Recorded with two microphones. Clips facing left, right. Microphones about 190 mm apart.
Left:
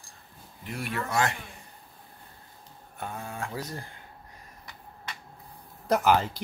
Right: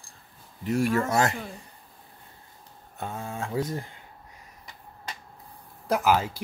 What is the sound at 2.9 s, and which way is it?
Speech, 25° right (ahead or behind).